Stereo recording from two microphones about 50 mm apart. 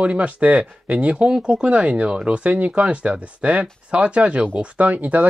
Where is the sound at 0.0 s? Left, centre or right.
Right.